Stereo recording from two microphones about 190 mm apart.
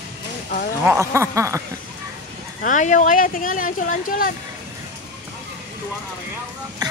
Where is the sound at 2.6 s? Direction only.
40° left (ahead or behind).